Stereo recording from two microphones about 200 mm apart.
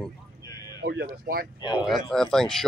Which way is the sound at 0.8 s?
55° right (ahead or behind).